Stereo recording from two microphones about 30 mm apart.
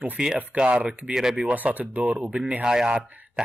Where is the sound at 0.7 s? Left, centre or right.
Right.